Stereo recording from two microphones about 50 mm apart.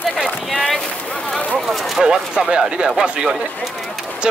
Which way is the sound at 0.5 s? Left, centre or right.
Centre.